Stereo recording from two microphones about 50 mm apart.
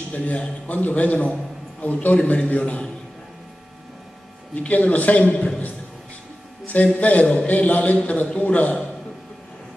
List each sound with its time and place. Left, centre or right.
0.1 s a man's voice: left
4.6 s a man's voice: left
7.0 s a man's voice: left